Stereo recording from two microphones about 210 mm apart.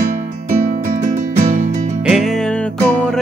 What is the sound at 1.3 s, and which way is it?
Music, 35° right (ahead or behind).